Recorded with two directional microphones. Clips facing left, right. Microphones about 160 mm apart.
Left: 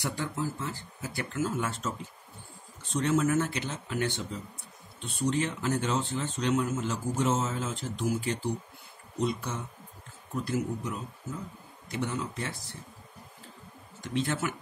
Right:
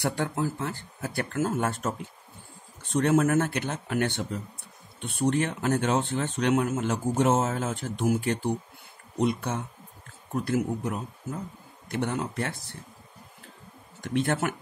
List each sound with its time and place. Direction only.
0.0 s speech: 60° right (ahead or behind)
14.0 s speech: 55° right (ahead or behind)